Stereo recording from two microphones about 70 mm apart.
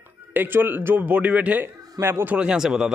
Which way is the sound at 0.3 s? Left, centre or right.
Right.